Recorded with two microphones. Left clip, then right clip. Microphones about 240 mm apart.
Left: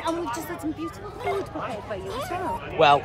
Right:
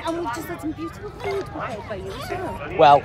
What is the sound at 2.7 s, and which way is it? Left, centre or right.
Speech, centre.